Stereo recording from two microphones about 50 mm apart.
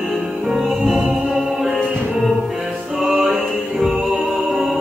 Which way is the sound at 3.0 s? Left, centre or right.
Centre.